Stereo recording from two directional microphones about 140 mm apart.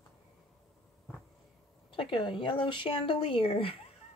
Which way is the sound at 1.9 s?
35° left (ahead or behind).